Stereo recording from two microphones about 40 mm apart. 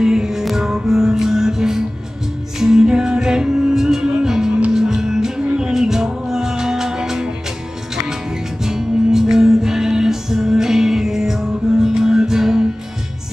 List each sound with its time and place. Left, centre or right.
0.0 s music: centre
5.4 s music: right
5.7 s music: centre